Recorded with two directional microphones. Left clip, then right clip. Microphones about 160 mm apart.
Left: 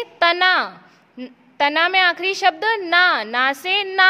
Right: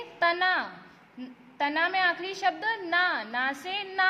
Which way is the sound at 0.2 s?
50° left (ahead or behind).